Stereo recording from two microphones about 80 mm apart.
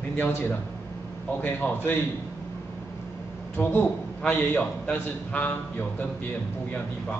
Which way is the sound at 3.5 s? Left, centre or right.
Centre.